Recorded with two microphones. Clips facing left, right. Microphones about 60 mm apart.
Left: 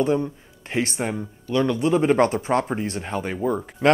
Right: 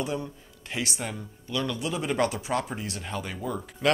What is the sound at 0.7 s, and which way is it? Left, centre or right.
Speech, left.